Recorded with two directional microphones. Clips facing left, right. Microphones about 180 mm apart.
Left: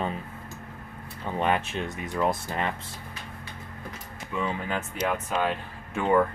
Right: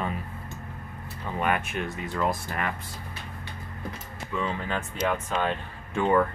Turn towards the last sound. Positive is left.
turn(degrees=10)  # may be behind; listen again after turning